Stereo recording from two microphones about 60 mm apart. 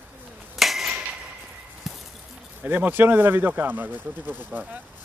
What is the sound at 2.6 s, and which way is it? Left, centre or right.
Speech, right.